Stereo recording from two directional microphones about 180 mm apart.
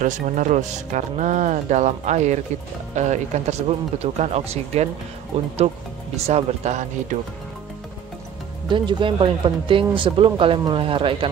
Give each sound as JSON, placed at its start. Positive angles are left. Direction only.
{"t": 0.0, "sound": "speech", "side_deg": -45}
{"t": 8.6, "sound": "speech", "side_deg": -25}